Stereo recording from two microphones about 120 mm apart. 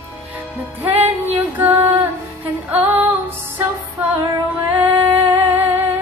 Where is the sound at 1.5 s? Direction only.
15° right (ahead or behind).